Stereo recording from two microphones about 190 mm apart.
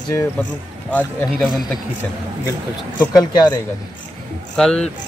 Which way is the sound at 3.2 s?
20° left (ahead or behind).